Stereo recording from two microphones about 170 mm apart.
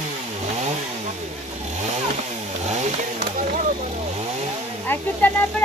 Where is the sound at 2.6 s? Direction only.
45° right (ahead or behind).